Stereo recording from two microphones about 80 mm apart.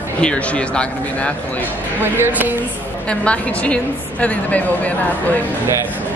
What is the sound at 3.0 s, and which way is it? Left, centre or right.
A woman's voice, centre.